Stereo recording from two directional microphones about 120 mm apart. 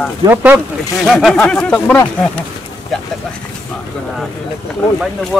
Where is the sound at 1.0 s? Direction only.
Centre (ahead or behind).